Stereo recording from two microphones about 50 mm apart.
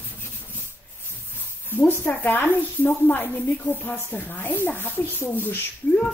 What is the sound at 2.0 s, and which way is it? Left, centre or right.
Speech, left.